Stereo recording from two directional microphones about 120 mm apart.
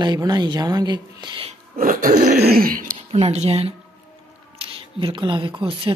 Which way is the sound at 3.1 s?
65° right (ahead or behind).